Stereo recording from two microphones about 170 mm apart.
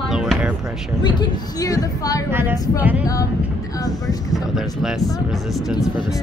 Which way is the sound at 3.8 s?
20° left (ahead or behind).